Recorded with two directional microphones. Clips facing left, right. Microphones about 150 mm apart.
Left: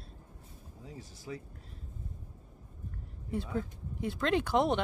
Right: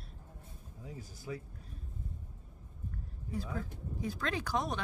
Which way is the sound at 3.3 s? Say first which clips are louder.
Left 4 dB; 25° left (ahead or behind).